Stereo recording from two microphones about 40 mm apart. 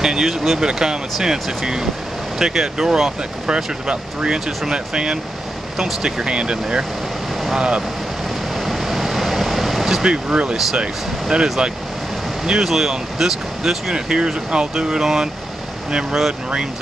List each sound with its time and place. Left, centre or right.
0.0 s speech: centre
8.5 s vehicle: centre
10.0 s speech: right
12.4 s speech: centre
13.9 s speech: centre